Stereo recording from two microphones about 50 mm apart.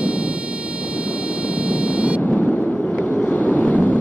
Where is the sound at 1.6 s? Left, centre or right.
Centre.